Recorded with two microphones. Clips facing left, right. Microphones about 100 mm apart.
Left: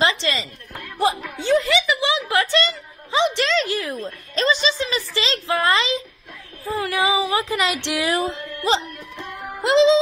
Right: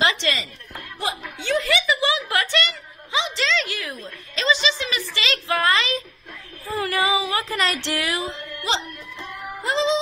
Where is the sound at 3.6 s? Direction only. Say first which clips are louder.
Left 7 dB; 35° left (ahead or behind).